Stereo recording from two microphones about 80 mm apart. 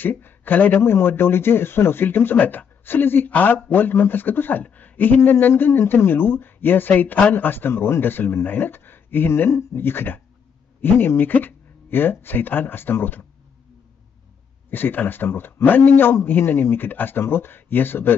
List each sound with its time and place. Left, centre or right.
0.0 s a man's voice: left
14.7 s a man's voice: left